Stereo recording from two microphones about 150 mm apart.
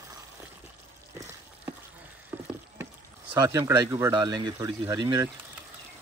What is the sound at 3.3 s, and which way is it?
Speech, 20° right (ahead or behind).